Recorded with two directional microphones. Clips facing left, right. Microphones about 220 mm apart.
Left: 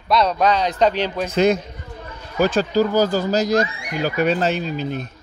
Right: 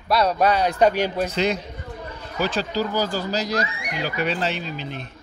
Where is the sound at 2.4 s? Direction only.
50° left (ahead or behind).